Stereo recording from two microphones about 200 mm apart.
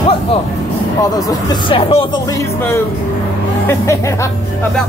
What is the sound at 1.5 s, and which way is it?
Speech, 25° left (ahead or behind).